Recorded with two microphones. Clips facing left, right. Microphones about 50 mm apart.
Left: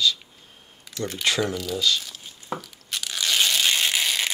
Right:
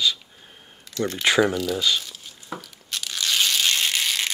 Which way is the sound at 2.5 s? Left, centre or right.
Centre.